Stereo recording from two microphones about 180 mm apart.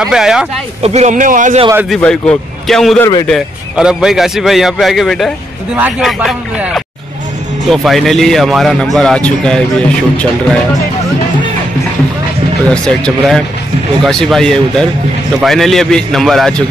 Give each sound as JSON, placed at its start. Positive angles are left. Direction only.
{"t": 0.0, "sound": "a man's voice", "side_deg": -5}
{"t": 0.8, "sound": "speech", "side_deg": -40}
{"t": 2.0, "sound": "a man's voice", "side_deg": 5}
{"t": 12.6, "sound": "a man's voice", "side_deg": 5}